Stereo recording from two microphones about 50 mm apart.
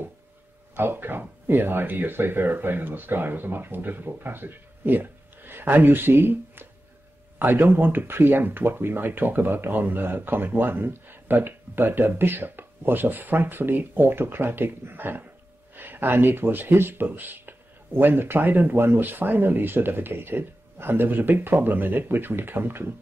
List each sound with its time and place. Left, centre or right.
0.7 s speech: right